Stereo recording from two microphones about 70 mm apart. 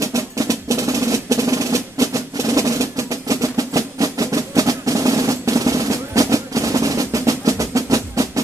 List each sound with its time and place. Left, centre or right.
0.0 s percussion: right